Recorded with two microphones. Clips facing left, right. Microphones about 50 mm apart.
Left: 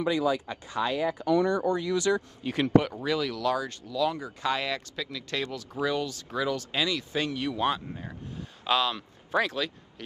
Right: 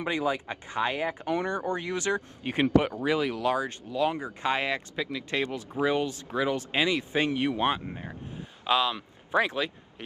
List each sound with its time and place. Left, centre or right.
0.0 s speech: right